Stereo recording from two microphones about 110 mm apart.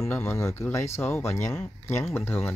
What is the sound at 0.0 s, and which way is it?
Speech, 25° left (ahead or behind).